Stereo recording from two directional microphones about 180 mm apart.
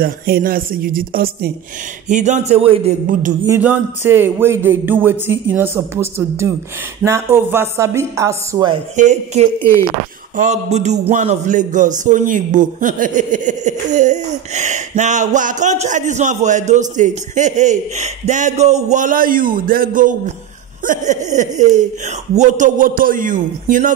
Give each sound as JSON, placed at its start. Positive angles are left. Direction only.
{"t": 0.0, "sound": "a man's voice", "side_deg": -55}
{"t": 2.0, "sound": "a man's voice", "side_deg": -40}
{"t": 3.1, "sound": "a man's voice", "side_deg": -45}
{"t": 3.4, "sound": "speech", "side_deg": -10}
{"t": 8.9, "sound": "a man's voice", "side_deg": -40}
{"t": 9.6, "sound": "speech", "side_deg": 15}
{"t": 10.3, "sound": "a man's voice", "side_deg": -40}